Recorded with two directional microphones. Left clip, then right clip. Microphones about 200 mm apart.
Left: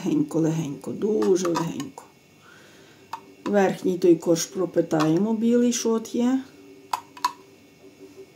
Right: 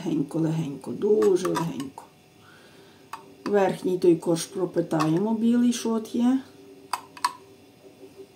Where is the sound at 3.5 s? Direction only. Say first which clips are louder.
Left 1 dB; 30° left (ahead or behind).